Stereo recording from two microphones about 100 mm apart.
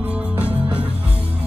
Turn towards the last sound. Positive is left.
turn(degrees=-15)  # may be behind; listen again after turning